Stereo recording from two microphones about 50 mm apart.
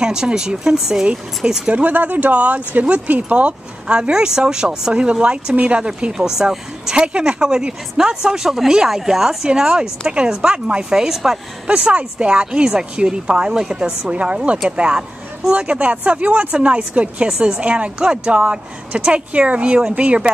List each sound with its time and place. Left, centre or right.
0.0 s speech: centre
1.7 s speech: right; by 11.3 s centre
11.6 s speech: right